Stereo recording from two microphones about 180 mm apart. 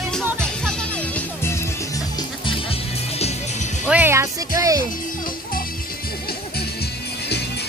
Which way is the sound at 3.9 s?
10° right (ahead or behind).